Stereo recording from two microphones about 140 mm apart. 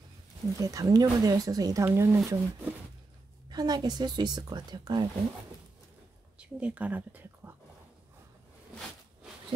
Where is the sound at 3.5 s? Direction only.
30° right (ahead or behind).